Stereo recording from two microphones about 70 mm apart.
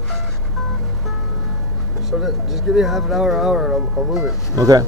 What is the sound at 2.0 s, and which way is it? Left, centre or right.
Speech, centre.